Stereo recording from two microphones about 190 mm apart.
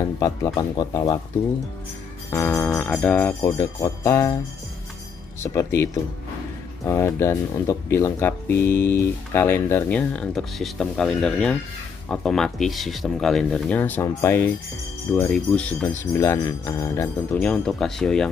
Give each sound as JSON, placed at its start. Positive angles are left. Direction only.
{"t": 0.2, "sound": "speech", "side_deg": 20}
{"t": 2.3, "sound": "speech", "side_deg": 10}
{"t": 5.4, "sound": "speech", "side_deg": 15}
{"t": 6.9, "sound": "speech", "side_deg": 15}